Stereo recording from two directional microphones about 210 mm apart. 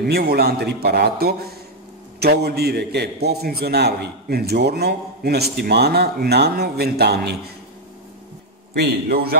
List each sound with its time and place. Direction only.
0.0 s a man's voice: 45° right (ahead or behind)
8.7 s a man's voice: 45° right (ahead or behind)